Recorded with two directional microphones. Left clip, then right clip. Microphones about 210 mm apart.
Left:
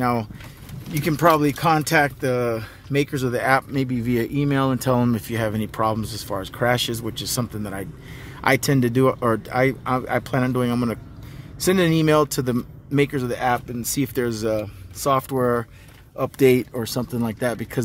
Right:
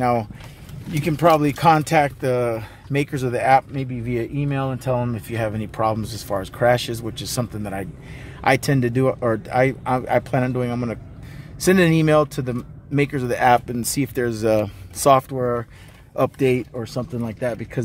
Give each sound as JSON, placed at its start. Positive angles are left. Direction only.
{"t": 0.0, "sound": "speech", "side_deg": 0}
{"t": 3.7, "sound": "speech", "side_deg": 20}
{"t": 5.3, "sound": "speech", "side_deg": 5}
{"t": 11.6, "sound": "speech", "side_deg": -5}
{"t": 13.4, "sound": "speech", "side_deg": -15}
{"t": 14.0, "sound": "speech", "side_deg": 0}
{"t": 14.5, "sound": "speech", "side_deg": -20}
{"t": 15.2, "sound": "speech", "side_deg": 10}